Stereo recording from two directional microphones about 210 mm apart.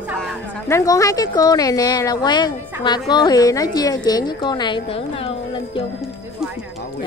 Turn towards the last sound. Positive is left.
turn(degrees=25)  # may be behind; listen again after turning